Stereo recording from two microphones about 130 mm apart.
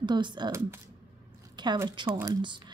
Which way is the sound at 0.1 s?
35° right (ahead or behind).